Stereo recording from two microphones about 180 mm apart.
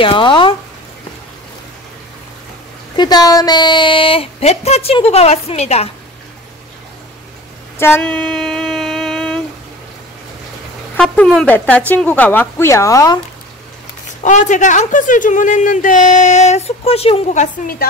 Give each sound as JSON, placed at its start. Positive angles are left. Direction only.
{"t": 0.0, "sound": "speech", "side_deg": 30}
{"t": 3.0, "sound": "speech", "side_deg": 20}
{"t": 7.8, "sound": "a sound", "side_deg": 10}
{"t": 11.0, "sound": "speech", "side_deg": 5}
{"t": 14.2, "sound": "speech", "side_deg": 45}